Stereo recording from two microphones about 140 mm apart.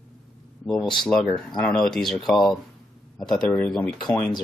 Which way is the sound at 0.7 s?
5° left (ahead or behind).